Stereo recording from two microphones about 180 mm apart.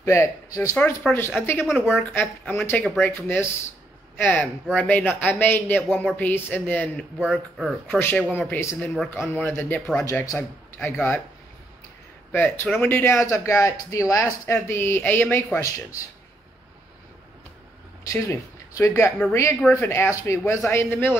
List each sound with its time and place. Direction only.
0.0 s speech: 15° left (ahead or behind)
1.7 s speech: 5° right (ahead or behind)
2.1 s speech: 10° left (ahead or behind)
7.2 s speech: centre (ahead or behind)
8.0 s speech: 10° left (ahead or behind)
8.7 s speech: 5° left (ahead or behind)
10.0 s speech: 15° left (ahead or behind)
12.3 s speech: 10° left (ahead or behind)
18.0 s speech: 15° left (ahead or behind)